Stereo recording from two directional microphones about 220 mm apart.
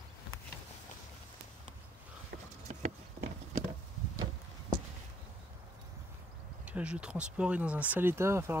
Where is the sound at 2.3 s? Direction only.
45° right (ahead or behind).